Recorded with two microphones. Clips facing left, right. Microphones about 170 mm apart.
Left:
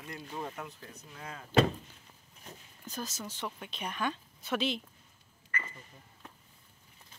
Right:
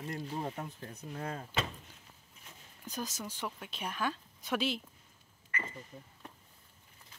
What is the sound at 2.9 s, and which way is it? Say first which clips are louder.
Speech: even; 15° right (ahead or behind).